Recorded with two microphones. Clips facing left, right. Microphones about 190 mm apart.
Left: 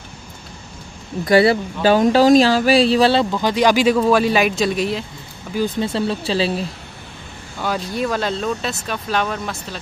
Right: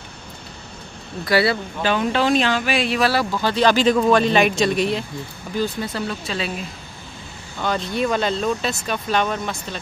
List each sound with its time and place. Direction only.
1.2 s speech: 20° left (ahead or behind); by 5.0 s centre (ahead or behind)
5.8 s speech: 30° left (ahead or behind)
7.6 s speech: 5° left (ahead or behind)